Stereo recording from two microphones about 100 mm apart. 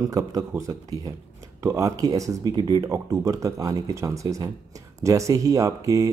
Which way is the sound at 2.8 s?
30° right (ahead or behind).